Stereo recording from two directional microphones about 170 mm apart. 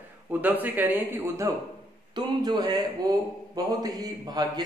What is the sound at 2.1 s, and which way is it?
A man's voice, 25° right (ahead or behind).